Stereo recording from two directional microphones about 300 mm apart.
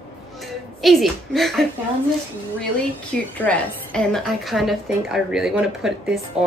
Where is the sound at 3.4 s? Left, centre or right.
Centre.